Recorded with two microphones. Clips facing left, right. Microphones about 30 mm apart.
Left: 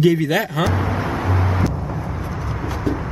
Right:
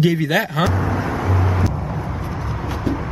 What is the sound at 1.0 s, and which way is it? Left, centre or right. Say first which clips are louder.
Vehicle: even; centre.